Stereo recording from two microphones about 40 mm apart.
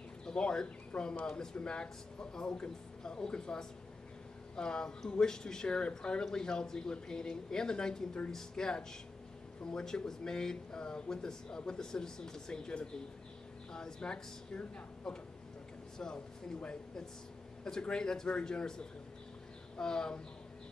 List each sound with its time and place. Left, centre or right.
0.2 s speech: centre
17.6 s speech: centre
19.8 s speech: centre